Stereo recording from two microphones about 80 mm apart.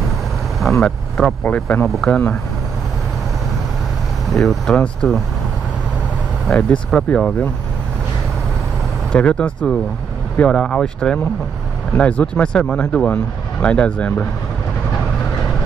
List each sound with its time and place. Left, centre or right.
0.6 s speech: centre
1.4 s speech: centre
4.3 s speech: centre
6.4 s speech: centre
9.1 s speech: centre